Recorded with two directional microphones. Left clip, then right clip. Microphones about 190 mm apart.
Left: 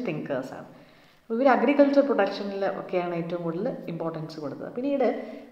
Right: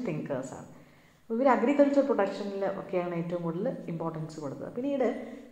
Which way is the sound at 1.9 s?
25° left (ahead or behind).